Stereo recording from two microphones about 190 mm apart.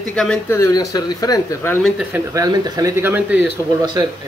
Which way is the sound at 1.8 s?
5° right (ahead or behind).